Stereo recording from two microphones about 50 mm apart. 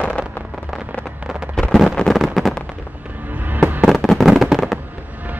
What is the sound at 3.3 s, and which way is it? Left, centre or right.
Fireworks, right.